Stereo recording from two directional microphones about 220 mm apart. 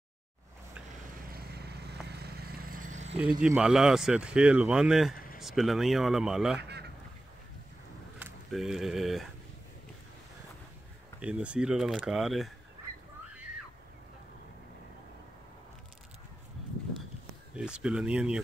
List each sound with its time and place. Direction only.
1.2 s vehicle: 45° right (ahead or behind)
3.2 s speech: 5° right (ahead or behind)
5.1 s a sound: 40° left (ahead or behind)
5.4 s speech: centre (ahead or behind)
6.6 s duck: 50° right (ahead or behind)
8.2 s speech: centre (ahead or behind)
11.1 s speech: 5° right (ahead or behind)
17.6 s speech: 5° right (ahead or behind)